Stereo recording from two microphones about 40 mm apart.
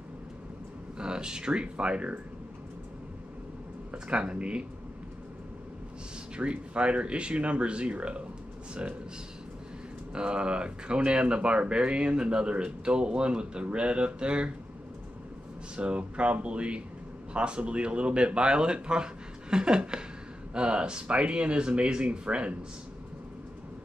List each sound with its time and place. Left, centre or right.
0.9 s speech: right
3.9 s speech: right
6.3 s speech: right
10.1 s speech: right
15.7 s speech: right